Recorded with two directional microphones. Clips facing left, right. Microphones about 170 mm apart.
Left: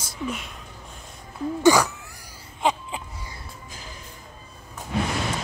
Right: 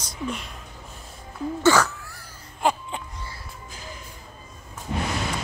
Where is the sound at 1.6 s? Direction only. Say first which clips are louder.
Left 2 dB; 15° left (ahead or behind).